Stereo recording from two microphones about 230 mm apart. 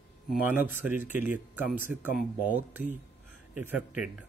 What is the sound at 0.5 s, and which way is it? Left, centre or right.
A man's voice, centre.